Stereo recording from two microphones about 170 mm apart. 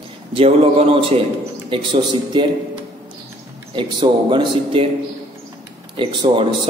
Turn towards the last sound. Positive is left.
turn(degrees=-30)  # may be behind; listen again after turning